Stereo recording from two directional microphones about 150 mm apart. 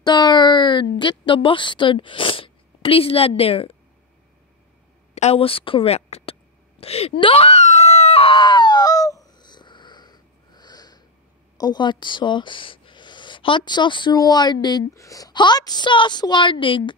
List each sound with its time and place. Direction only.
0.0 s speech: 30° left (ahead or behind)
5.1 s a woman's voice: 45° left (ahead or behind)
6.8 s wail: 40° left (ahead or behind)
11.5 s speech: 25° left (ahead or behind)